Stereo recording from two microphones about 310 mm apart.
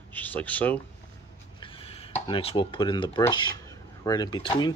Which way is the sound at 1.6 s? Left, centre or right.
Centre.